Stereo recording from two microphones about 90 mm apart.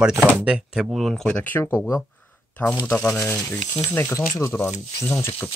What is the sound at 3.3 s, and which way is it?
Speech, 30° left (ahead or behind).